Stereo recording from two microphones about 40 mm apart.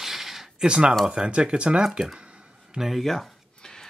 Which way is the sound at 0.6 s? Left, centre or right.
Right.